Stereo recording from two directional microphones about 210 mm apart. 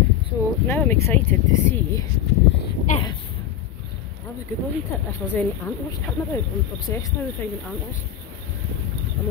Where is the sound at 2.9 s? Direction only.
35° left (ahead or behind).